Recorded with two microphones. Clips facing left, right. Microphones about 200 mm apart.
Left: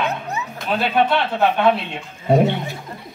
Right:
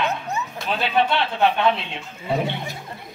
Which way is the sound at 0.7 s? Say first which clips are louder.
Left 4 dB; 50° left (ahead or behind).